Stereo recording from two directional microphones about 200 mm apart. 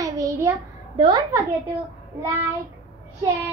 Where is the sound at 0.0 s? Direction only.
15° right (ahead or behind).